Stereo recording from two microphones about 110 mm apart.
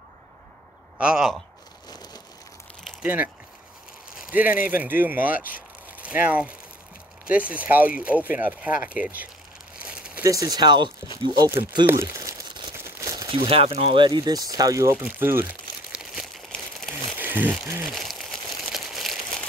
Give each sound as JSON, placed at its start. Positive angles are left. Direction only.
{"t": 0.9, "sound": "speech", "side_deg": -5}
{"t": 1.9, "sound": "vehicle", "side_deg": 40}
{"t": 3.0, "sound": "speech", "side_deg": -15}
{"t": 9.8, "sound": "crumpling", "side_deg": -10}
{"t": 10.2, "sound": "speech", "side_deg": -30}
{"t": 11.8, "sound": "speech", "side_deg": -25}
{"t": 12.4, "sound": "crumpling", "side_deg": -45}
{"t": 12.7, "sound": "crumpling", "side_deg": -25}
{"t": 13.3, "sound": "speech", "side_deg": -55}
{"t": 15.9, "sound": "crumpling", "side_deg": -5}
{"t": 17.2, "sound": "a sound", "side_deg": -15}
{"t": 17.8, "sound": "crumpling", "side_deg": 0}